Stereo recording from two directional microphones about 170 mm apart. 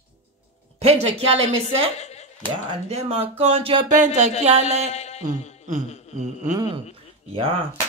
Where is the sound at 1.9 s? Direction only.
40° left (ahead or behind).